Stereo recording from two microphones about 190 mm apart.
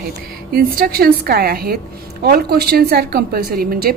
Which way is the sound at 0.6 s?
50° right (ahead or behind).